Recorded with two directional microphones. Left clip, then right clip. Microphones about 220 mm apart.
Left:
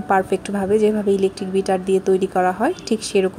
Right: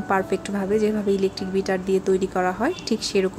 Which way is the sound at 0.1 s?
5° left (ahead or behind).